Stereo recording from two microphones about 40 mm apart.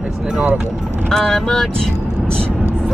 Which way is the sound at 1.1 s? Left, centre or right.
Centre.